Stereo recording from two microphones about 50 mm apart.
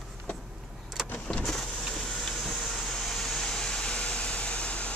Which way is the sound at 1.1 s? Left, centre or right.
Left.